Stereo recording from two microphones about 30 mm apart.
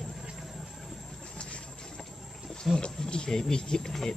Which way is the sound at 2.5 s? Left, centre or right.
Centre.